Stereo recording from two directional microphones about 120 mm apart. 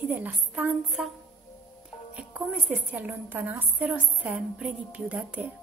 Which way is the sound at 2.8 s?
15° right (ahead or behind).